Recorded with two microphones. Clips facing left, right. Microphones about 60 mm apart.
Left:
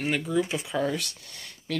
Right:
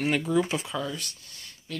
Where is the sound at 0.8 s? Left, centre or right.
Left.